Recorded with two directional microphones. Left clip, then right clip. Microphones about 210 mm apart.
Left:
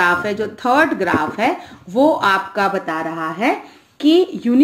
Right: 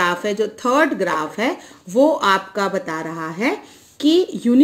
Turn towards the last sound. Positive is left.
turn(degrees=-55)  # may be behind; listen again after turning